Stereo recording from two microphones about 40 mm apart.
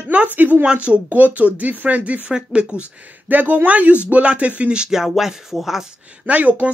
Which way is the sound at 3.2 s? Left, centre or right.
Right.